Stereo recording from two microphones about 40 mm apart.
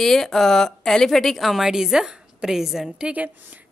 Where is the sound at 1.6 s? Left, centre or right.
Centre.